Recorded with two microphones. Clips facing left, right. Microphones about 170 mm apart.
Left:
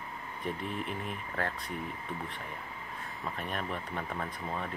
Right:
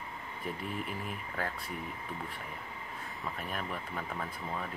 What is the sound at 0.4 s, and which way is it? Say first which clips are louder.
Speech: left 2 dB; 5° right (ahead or behind).